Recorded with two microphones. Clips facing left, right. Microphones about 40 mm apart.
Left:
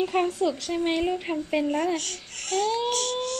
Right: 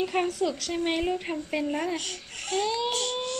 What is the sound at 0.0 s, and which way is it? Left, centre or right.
A woman's voice, centre.